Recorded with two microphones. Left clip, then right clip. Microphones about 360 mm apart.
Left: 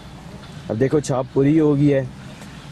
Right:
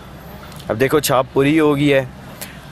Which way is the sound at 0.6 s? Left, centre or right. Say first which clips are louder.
Right 4 dB; right.